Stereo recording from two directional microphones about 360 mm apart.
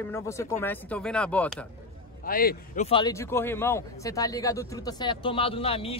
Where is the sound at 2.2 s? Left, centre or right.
Left.